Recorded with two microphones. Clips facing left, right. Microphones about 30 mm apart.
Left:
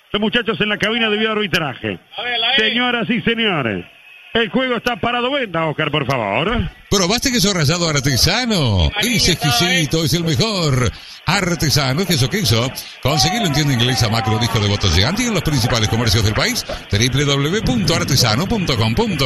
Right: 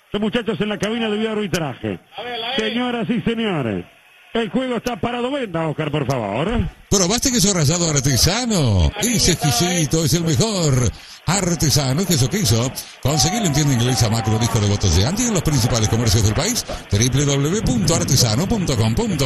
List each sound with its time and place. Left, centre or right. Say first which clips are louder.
0.1 s a man's voice: left 3 dB; left
0.5 s a man's voice: left 4 dB; left